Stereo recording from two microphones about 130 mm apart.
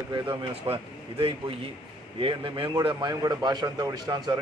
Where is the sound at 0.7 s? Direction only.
45° right (ahead or behind).